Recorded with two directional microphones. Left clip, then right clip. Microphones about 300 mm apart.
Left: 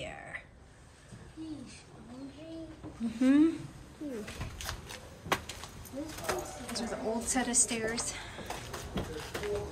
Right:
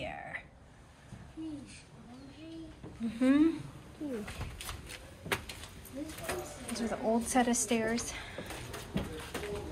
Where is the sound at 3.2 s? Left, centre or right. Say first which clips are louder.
Left 1 dB; centre.